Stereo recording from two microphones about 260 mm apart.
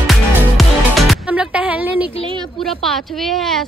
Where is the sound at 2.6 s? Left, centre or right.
Centre.